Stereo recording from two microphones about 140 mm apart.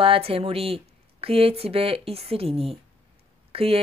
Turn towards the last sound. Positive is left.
turn(degrees=-45)  # may be behind; listen again after turning